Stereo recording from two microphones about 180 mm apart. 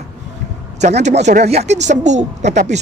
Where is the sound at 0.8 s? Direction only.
40° right (ahead or behind).